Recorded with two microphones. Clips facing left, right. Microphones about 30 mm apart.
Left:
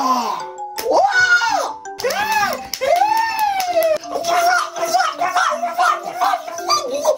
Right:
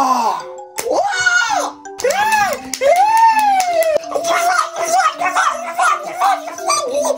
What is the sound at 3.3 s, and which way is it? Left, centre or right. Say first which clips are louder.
Police car: right 5 dB; right.